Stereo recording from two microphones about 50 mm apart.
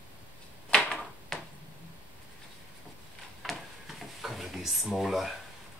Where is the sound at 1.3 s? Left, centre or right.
Centre.